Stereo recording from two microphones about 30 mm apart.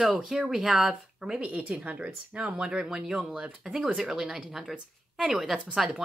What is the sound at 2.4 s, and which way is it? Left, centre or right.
Speech, right.